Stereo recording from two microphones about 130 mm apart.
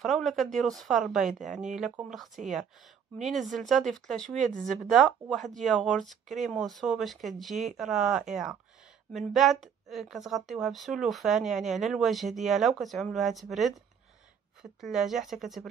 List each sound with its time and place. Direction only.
0.0 s a woman's voice: centre (ahead or behind)